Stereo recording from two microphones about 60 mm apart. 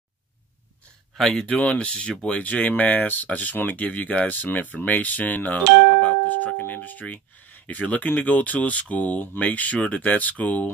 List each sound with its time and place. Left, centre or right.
1.1 s speech: centre
1.4 s speech: centre